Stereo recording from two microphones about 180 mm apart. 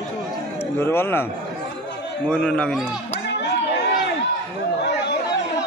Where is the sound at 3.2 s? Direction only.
70° left (ahead or behind).